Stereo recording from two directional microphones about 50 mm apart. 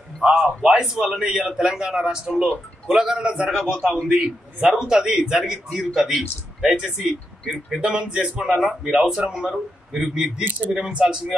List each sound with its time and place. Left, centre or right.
0.2 s a man's voice: right